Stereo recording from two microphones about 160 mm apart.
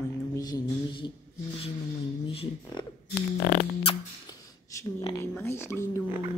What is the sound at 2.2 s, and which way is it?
Speech, 30° left (ahead or behind).